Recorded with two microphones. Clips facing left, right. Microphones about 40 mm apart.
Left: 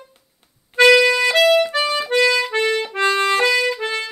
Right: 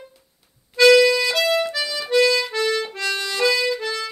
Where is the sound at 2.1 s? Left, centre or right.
Left.